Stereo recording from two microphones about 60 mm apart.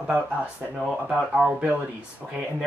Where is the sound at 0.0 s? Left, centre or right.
Centre.